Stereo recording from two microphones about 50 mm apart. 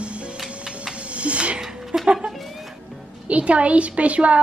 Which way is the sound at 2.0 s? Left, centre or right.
Centre.